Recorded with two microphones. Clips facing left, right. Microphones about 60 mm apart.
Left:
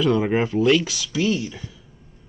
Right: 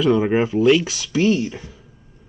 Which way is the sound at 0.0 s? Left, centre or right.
Centre.